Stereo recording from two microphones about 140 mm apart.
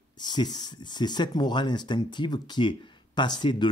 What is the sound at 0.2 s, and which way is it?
Speech, 30° left (ahead or behind).